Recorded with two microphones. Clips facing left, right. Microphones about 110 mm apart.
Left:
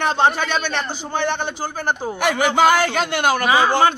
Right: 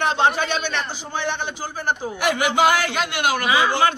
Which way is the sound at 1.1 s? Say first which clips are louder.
Left 4 dB; 55° left (ahead or behind).